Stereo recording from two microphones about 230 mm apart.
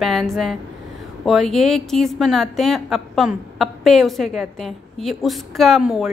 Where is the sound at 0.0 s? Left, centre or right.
Centre.